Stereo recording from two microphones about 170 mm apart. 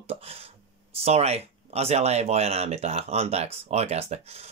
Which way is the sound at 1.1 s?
40° right (ahead or behind).